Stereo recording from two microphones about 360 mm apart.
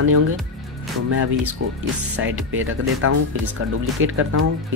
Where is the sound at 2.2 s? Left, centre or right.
Right.